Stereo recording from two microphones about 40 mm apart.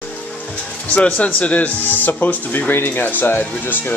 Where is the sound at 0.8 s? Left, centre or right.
Left.